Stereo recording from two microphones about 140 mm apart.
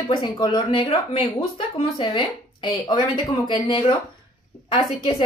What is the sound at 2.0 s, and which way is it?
A woman's voice, 35° left (ahead or behind).